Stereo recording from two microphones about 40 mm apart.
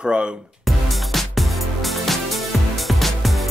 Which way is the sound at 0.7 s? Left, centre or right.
Centre.